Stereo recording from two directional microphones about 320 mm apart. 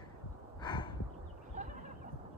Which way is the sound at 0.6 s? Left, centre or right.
Centre.